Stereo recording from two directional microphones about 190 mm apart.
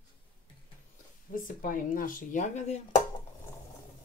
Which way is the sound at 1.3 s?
45° left (ahead or behind).